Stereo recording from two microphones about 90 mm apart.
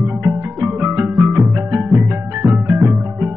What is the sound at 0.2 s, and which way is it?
Music, 20° right (ahead or behind).